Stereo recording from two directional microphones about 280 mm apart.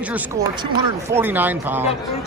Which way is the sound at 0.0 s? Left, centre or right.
Centre.